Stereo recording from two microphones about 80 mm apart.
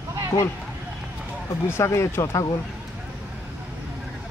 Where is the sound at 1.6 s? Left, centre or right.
Left.